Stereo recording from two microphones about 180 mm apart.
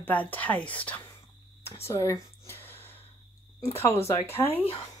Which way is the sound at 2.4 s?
10° left (ahead or behind).